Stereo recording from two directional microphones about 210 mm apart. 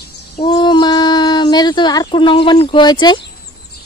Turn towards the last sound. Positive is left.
turn(degrees=20)  # may be behind; listen again after turning